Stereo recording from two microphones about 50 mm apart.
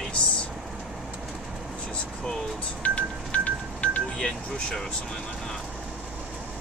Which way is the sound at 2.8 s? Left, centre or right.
Left.